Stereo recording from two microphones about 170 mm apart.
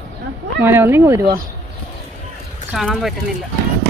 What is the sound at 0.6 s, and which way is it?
Speech, 15° right (ahead or behind).